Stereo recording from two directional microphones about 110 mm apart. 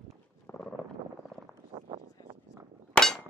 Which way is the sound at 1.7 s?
50° right (ahead or behind).